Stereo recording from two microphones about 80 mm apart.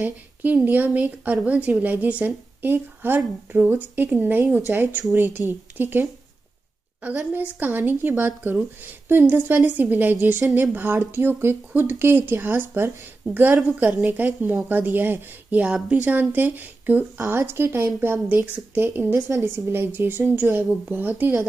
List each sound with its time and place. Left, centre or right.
0.0 s a woman's voice: right